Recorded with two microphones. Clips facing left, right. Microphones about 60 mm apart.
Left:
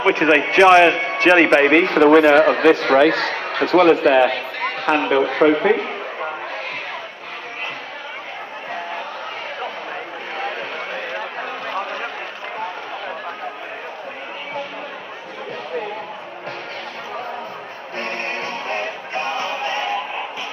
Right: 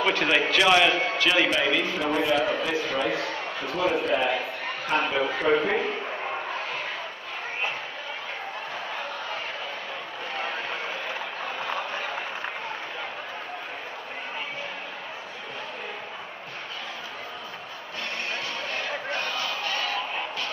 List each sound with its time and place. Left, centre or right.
0.0 s a man's voice: left
17.9 s music: left